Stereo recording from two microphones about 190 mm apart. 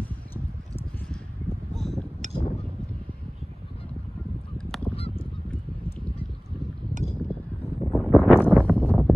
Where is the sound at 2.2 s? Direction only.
40° right (ahead or behind).